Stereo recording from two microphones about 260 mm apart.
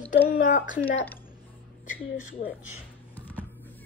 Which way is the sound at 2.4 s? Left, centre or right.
Left.